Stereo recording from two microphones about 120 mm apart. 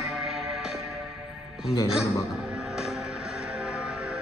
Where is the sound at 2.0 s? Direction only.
5° right (ahead or behind).